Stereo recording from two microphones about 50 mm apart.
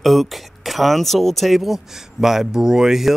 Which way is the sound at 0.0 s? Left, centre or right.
Centre.